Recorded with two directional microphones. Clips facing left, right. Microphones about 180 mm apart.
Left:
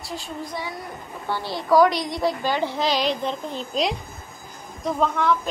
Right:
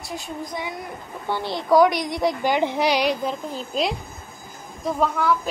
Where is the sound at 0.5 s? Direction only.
20° right (ahead or behind).